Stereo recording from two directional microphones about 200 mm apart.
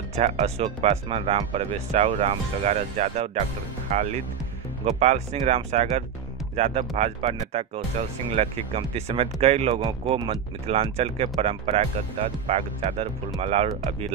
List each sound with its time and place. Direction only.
0.1 s speech: 30° right (ahead or behind)